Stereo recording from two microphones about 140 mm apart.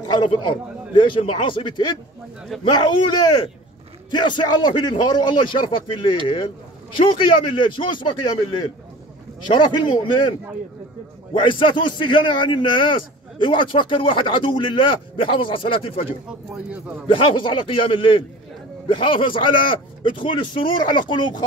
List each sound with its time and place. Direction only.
0.1 s a man's voice: 35° left (ahead or behind)
11.3 s a man's voice: 35° left (ahead or behind)
16.3 s speech: 10° right (ahead or behind)
17.1 s a man's voice: 35° left (ahead or behind)